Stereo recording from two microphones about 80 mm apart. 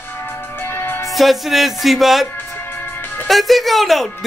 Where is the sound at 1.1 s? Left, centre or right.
Centre.